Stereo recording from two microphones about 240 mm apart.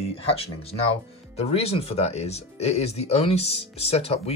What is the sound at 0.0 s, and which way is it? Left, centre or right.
Speech, left.